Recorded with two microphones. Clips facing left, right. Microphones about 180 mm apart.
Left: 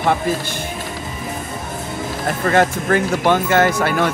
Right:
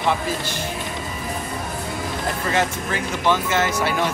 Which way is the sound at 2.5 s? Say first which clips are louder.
Left 9 dB; 55° left (ahead or behind).